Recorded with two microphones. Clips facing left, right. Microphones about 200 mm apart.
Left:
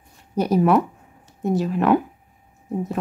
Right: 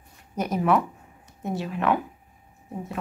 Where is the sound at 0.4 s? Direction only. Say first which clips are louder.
Left 5 dB; 35° left (ahead or behind).